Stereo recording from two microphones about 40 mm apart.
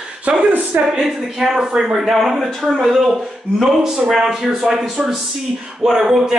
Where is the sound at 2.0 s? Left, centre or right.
Centre.